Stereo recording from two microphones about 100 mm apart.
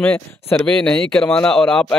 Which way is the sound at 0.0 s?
15° left (ahead or behind).